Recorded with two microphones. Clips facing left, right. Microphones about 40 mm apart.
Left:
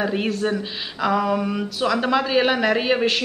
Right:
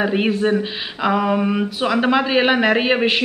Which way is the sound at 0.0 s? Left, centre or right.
Right.